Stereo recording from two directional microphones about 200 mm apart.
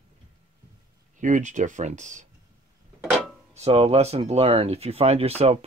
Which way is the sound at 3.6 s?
30° right (ahead or behind).